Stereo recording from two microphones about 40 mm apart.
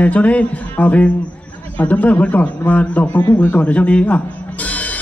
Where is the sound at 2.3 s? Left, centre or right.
Left.